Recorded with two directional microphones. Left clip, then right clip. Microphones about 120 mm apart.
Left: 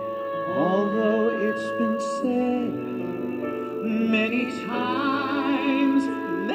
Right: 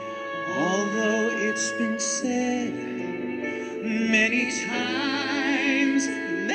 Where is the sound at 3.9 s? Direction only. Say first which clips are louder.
Right 3 dB; 45° left (ahead or behind).